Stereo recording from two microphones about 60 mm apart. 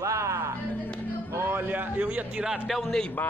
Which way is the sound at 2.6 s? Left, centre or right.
Centre.